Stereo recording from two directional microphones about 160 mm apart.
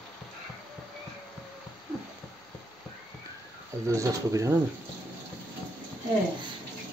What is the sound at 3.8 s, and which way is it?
Speech, 20° right (ahead or behind).